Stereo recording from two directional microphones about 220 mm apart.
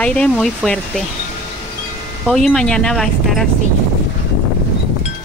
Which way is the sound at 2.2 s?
5° left (ahead or behind).